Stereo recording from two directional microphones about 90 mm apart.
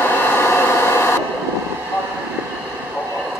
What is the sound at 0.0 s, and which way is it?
Train, 20° left (ahead or behind).